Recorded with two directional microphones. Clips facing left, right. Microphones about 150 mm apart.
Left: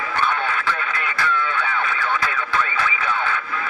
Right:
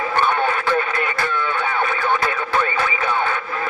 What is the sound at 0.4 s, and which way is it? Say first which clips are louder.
Radio: right 5 dB; 45° right (ahead or behind).